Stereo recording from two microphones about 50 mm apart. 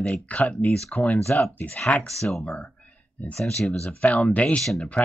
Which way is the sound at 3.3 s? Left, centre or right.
Centre.